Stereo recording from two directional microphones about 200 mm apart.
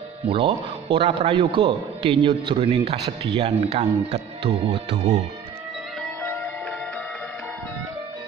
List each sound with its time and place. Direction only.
0.3 s a man's voice: 25° right (ahead or behind)